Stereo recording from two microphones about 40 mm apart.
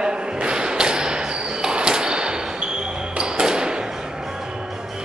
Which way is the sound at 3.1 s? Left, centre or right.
Right.